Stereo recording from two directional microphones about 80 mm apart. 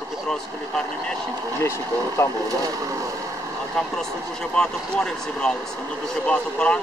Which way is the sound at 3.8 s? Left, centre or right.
Centre.